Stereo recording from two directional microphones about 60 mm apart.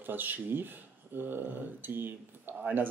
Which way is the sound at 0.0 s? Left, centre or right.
Right.